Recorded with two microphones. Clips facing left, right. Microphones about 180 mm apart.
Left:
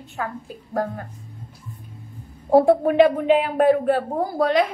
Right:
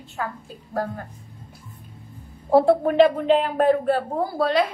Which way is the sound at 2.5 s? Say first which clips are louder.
Left 2 dB; 15° left (ahead or behind).